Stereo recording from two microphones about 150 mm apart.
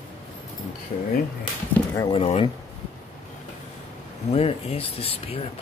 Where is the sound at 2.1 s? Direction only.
40° left (ahead or behind).